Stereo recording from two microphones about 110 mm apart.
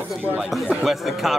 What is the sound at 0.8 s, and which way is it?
Speech, centre (ahead or behind).